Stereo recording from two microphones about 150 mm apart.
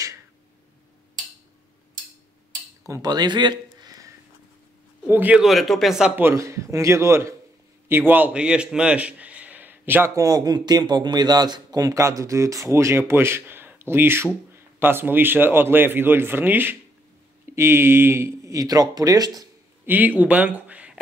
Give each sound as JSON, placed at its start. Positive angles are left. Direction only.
{"t": 2.9, "sound": "speech", "side_deg": -25}
{"t": 5.0, "sound": "a man's voice", "side_deg": -10}
{"t": 19.9, "sound": "speech", "side_deg": -10}